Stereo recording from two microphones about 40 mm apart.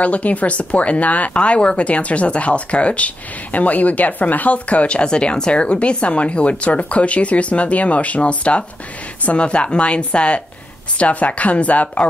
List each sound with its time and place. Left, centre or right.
0.0 s speech: left